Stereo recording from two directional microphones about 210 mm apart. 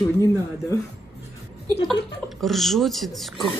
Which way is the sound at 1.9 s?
Centre (ahead or behind).